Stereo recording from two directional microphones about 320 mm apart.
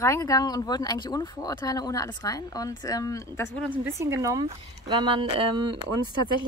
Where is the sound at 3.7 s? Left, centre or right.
Centre.